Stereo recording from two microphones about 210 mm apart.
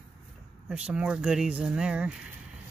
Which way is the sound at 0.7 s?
5° right (ahead or behind).